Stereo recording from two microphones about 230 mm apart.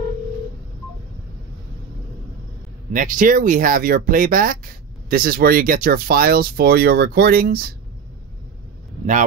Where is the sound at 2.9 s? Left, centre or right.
Right.